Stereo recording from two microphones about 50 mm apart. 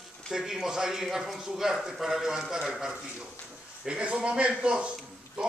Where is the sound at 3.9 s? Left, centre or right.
Right.